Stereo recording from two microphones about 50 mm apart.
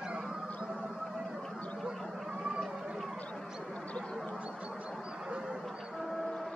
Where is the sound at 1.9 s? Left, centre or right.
Centre.